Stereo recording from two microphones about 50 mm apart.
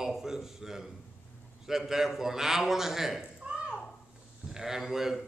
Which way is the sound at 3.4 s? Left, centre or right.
Right.